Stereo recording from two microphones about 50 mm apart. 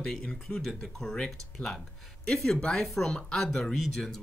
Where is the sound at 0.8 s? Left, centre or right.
Centre.